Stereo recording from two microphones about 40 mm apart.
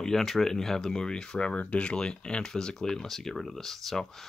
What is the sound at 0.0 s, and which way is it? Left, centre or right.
Speech, centre.